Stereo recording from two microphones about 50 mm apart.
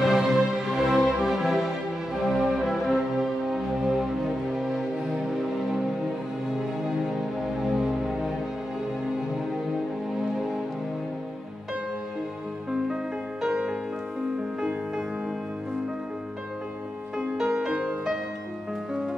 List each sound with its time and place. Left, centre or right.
0.0 s music: centre
7.6 s music: centre
13.4 s music: centre
17.2 s music: centre